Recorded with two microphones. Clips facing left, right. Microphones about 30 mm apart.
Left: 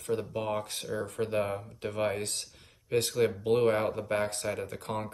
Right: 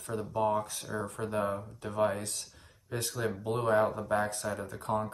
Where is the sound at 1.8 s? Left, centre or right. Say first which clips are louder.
Right 1 dB; left.